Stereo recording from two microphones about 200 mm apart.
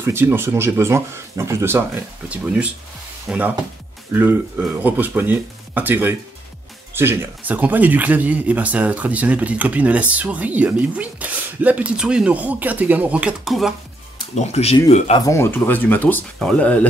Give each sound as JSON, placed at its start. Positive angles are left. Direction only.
{"t": 0.0, "sound": "speech", "side_deg": -10}
{"t": 14.3, "sound": "speech", "side_deg": 35}
{"t": 15.1, "sound": "speech", "side_deg": 15}